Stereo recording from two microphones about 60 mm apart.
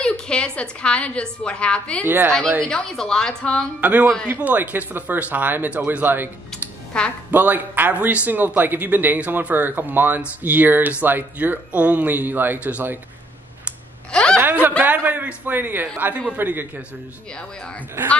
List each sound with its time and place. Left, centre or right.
0.0 s a woman's voice: centre
2.0 s a woman's voice: right
2.6 s speech: centre
3.8 s speech: right
6.9 s speech: centre
7.2 s speech: right
14.1 s speech: centre
14.8 s speech: right
17.3 s speech: centre